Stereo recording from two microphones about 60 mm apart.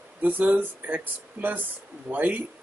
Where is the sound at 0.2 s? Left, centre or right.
Right.